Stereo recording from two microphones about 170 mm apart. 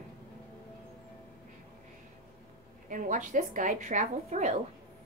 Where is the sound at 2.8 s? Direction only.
50° right (ahead or behind).